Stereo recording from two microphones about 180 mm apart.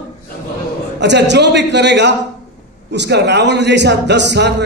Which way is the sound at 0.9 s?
75° right (ahead or behind).